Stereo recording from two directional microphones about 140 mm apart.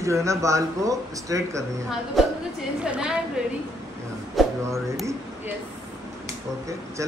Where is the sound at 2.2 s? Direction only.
Centre (ahead or behind).